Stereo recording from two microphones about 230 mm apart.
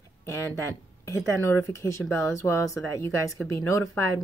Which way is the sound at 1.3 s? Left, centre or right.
Centre.